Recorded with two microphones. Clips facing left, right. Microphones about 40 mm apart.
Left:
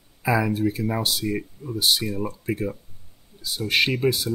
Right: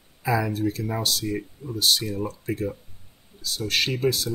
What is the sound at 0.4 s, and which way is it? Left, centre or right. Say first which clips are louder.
Speech: left 3 dB; centre.